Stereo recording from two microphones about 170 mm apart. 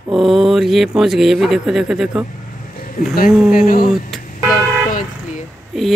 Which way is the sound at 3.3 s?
5° right (ahead or behind).